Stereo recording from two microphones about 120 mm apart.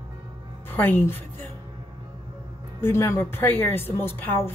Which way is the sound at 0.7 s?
15° left (ahead or behind).